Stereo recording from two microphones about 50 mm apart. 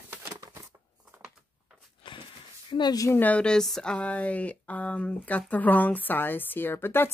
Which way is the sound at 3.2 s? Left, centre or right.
Left.